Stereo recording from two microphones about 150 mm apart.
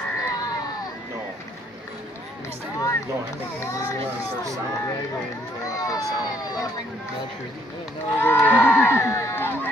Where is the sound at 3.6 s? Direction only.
20° left (ahead or behind).